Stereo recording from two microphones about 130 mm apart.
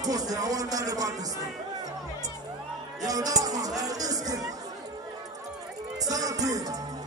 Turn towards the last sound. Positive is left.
turn(degrees=-30)  # may be behind; listen again after turning